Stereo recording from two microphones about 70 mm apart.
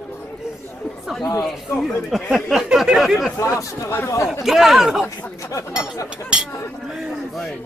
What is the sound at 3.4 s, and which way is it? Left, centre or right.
Speech, left.